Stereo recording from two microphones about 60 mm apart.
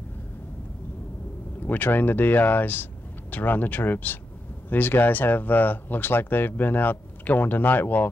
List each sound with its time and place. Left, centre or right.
1.6 s speech: left